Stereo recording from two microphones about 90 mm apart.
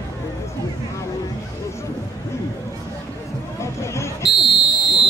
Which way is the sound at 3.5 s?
30° left (ahead or behind).